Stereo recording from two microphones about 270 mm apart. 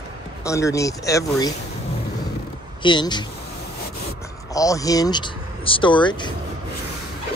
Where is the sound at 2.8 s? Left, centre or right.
Centre.